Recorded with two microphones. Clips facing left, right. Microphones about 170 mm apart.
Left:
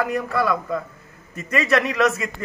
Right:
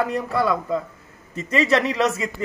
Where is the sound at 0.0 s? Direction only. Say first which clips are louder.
Even; 25° right (ahead or behind).